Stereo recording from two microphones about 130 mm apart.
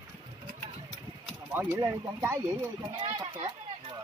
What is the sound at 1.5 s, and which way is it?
Speech, 20° right (ahead or behind).